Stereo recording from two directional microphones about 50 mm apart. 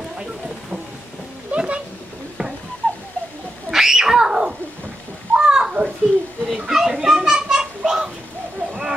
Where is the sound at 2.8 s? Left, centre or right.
Left.